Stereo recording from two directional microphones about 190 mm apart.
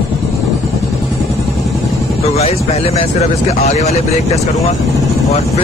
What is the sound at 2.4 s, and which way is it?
Speech, 30° left (ahead or behind).